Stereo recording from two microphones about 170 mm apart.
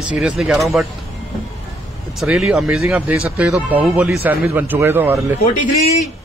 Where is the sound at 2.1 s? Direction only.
Centre (ahead or behind).